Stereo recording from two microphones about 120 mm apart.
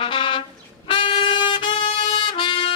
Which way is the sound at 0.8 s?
45° left (ahead or behind).